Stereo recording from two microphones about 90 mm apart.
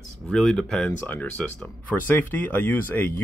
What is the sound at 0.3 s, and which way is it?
Speech, 5° left (ahead or behind).